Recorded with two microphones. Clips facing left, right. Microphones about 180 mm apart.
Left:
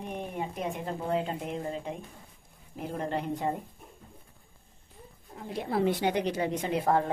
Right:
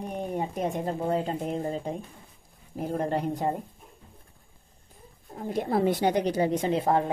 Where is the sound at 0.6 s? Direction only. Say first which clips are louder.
Right 6 dB; 40° right (ahead or behind).